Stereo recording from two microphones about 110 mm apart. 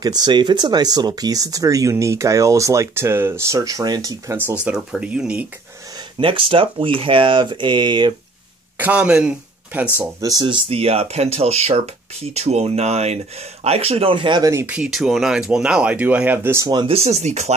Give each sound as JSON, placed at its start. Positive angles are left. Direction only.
{"t": 0.0, "sound": "speech", "side_deg": -40}
{"t": 4.4, "sound": "speech", "side_deg": -15}
{"t": 6.1, "sound": "speech", "side_deg": -55}
{"t": 8.7, "sound": "speech", "side_deg": -15}
{"t": 10.2, "sound": "speech", "side_deg": -35}
{"t": 10.5, "sound": "speech", "side_deg": -60}
{"t": 14.4, "sound": "speech", "side_deg": -25}
{"t": 14.7, "sound": "speech", "side_deg": -5}
{"t": 16.6, "sound": "speech", "side_deg": -40}
{"t": 16.9, "sound": "speech", "side_deg": -80}